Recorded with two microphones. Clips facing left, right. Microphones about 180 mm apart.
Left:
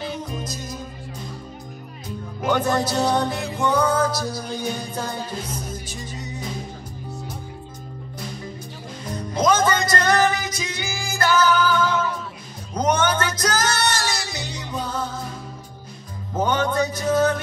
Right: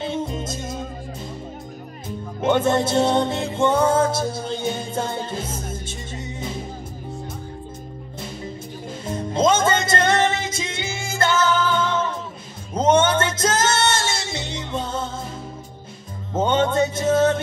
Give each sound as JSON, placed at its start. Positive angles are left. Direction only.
{"t": 0.0, "sound": "music", "side_deg": -25}
{"t": 2.4, "sound": "music", "side_deg": -25}
{"t": 9.0, "sound": "music", "side_deg": -25}
{"t": 16.3, "sound": "music", "side_deg": -25}